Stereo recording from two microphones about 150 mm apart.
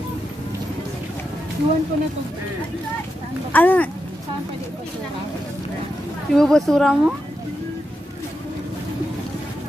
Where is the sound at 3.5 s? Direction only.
10° left (ahead or behind).